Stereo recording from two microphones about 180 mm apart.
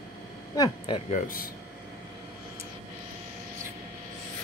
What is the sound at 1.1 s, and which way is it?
Speech, 50° left (ahead or behind).